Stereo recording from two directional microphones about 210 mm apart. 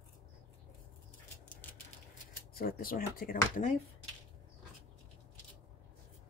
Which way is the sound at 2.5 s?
45° left (ahead or behind).